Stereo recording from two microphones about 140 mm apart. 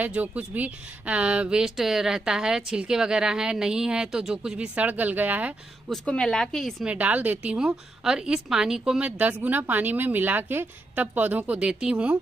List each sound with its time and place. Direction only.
0.0 s speech: 10° right (ahead or behind)
5.9 s speech: 5° left (ahead or behind)
6.9 s a woman's voice: 10° right (ahead or behind)